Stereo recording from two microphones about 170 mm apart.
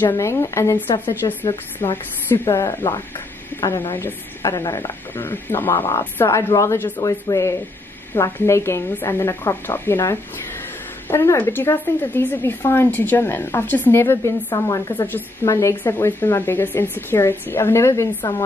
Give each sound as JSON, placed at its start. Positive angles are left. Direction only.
{"t": 0.0, "sound": "a woman's voice", "side_deg": 15}
{"t": 1.2, "sound": "speech", "side_deg": 30}
{"t": 2.2, "sound": "a woman's voice", "side_deg": 15}